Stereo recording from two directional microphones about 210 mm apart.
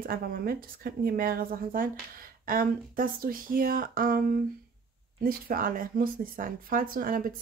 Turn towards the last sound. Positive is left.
turn(degrees=-40)  # may be behind; listen again after turning